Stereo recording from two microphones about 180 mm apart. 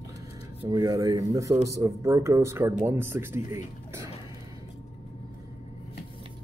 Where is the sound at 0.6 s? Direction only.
20° right (ahead or behind).